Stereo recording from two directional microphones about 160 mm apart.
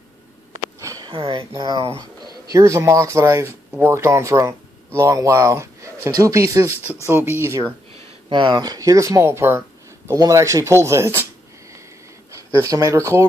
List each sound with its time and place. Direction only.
0.7 s sniff: 20° right (ahead or behind)
1.5 s speech: 25° right (ahead or behind)
6.8 s speech: 15° left (ahead or behind)
7.1 s speech: 15° right (ahead or behind)
8.3 s speech: 30° right (ahead or behind)
12.3 s speech: 20° right (ahead or behind)